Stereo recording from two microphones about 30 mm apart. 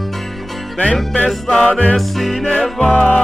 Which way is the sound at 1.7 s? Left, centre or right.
Left.